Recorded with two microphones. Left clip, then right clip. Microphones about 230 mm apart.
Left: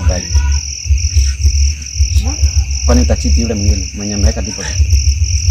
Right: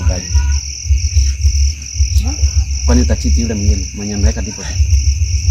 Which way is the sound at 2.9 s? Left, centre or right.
Centre.